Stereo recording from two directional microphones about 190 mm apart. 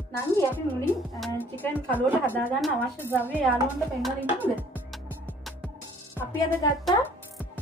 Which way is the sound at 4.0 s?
Centre (ahead or behind).